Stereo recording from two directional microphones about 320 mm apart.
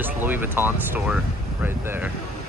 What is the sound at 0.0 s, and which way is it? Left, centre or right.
Speech, centre.